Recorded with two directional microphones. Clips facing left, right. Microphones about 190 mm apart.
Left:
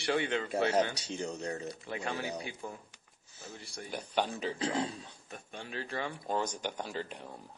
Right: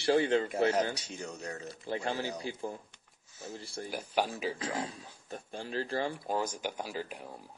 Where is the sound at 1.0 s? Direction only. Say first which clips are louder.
Left 4 dB; 30° left (ahead or behind).